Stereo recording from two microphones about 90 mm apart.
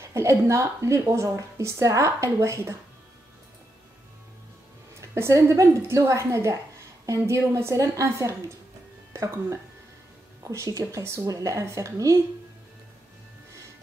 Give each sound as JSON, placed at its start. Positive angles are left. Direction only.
{"t": 0.1, "sound": "a woman's voice", "side_deg": -35}
{"t": 5.1, "sound": "a woman's voice", "side_deg": -35}